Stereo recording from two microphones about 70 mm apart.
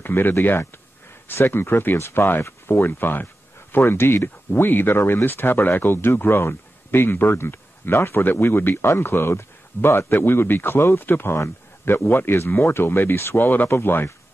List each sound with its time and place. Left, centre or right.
0.0 s speech: left